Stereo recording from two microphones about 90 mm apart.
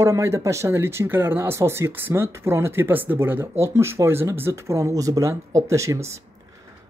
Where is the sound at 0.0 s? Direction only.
35° right (ahead or behind).